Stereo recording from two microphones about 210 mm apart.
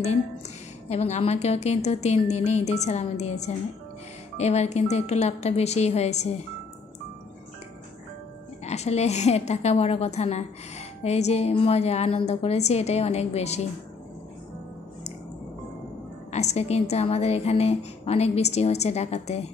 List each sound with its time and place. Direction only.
0.8 s a woman's voice: 30° left (ahead or behind)
8.6 s a woman's voice: 30° left (ahead or behind)
16.3 s a woman's voice: 30° left (ahead or behind)